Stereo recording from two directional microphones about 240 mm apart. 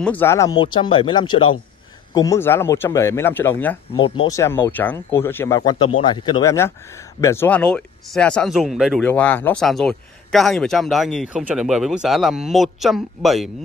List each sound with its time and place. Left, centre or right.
0.0 s speech: centre
3.9 s speech: left; by 13.5 s centre